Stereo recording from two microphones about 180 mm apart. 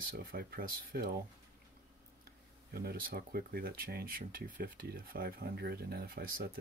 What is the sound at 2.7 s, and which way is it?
Speech, 60° right (ahead or behind).